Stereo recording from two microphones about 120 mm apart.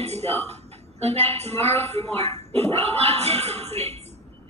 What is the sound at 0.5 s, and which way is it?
A woman's voice, 60° right (ahead or behind).